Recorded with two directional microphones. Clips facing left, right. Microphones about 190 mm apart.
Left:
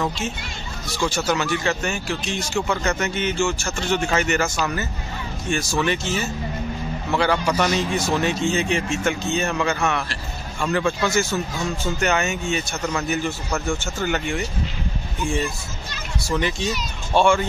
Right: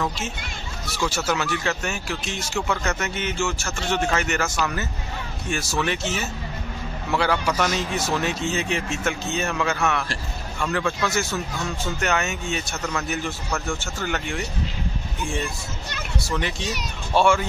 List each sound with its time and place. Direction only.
0.9 s speech: 5° right (ahead or behind)
16.2 s speech: centre (ahead or behind)